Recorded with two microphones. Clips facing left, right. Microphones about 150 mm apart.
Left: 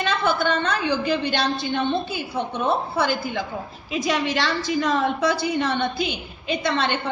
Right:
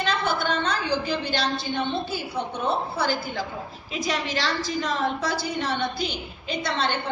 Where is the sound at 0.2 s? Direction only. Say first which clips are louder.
Left 3 dB; 55° left (ahead or behind).